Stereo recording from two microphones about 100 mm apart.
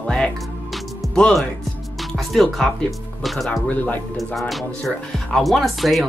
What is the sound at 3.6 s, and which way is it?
Speech, 15° left (ahead or behind).